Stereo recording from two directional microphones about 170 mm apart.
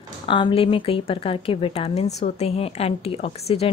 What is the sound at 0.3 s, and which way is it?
A woman's voice, 30° left (ahead or behind).